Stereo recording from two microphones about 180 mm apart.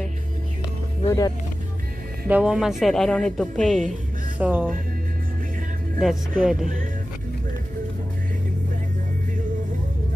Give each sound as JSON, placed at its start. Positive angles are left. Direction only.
{"t": 1.0, "sound": "speech", "side_deg": 20}
{"t": 2.2, "sound": "speech", "side_deg": -5}
{"t": 4.4, "sound": "speech", "side_deg": -10}
{"t": 5.9, "sound": "speech", "side_deg": 0}